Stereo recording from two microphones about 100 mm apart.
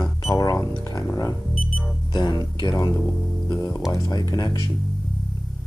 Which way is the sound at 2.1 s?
50° left (ahead or behind).